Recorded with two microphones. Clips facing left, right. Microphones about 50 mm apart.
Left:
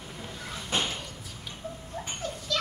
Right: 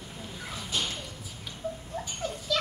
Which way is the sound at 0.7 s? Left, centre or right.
Left.